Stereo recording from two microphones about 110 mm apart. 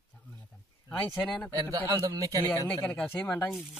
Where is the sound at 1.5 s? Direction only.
30° right (ahead or behind).